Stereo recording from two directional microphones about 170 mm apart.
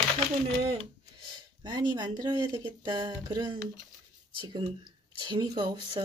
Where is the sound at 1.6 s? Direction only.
25° right (ahead or behind).